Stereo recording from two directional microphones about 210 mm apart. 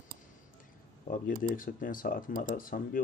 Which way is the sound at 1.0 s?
40° left (ahead or behind).